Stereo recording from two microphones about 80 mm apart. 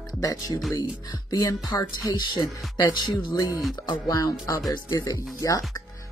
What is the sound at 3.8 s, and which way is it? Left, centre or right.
Speech, left.